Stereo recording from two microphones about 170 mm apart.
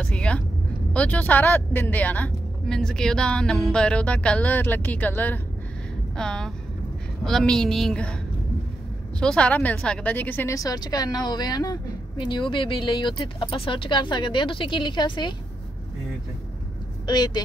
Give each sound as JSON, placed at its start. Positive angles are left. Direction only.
{"t": 0.0, "sound": "vehicle", "side_deg": 5}
{"t": 0.9, "sound": "a woman's voice", "side_deg": 10}
{"t": 9.2, "sound": "a woman's voice", "side_deg": 5}
{"t": 17.0, "sound": "speech", "side_deg": 25}